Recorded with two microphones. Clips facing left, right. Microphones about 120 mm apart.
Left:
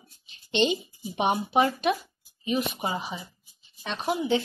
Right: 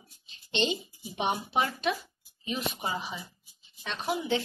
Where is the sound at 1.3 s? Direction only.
10° left (ahead or behind).